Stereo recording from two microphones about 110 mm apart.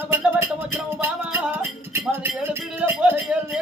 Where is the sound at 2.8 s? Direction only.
20° right (ahead or behind).